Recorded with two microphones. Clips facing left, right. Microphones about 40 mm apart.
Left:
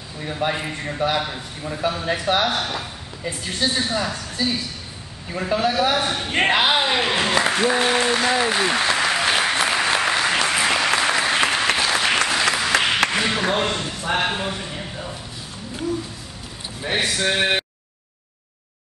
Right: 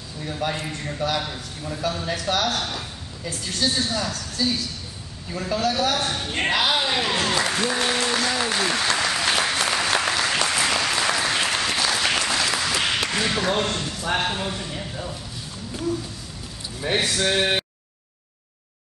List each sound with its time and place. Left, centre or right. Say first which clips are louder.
0.2 s a man's voice: left 3 dB; left
6.3 s applause: left 4 dB; left
13.1 s speech: left 2 dB; centre
14.2 s a sound: left 2 dB; centre
16.8 s speech: left 1 dB; centre